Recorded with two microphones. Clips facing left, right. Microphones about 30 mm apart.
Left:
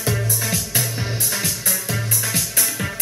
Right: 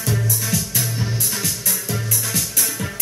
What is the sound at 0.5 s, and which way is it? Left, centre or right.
Music, left.